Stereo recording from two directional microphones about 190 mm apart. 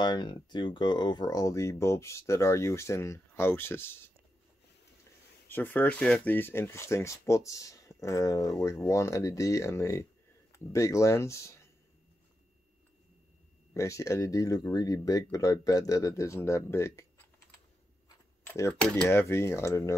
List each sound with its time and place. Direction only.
0.0 s speech: 25° left (ahead or behind)
5.5 s speech: 10° left (ahead or behind)
13.7 s speech: 15° left (ahead or behind)
18.0 s a sound: 15° left (ahead or behind)
18.7 s speech: 5° left (ahead or behind)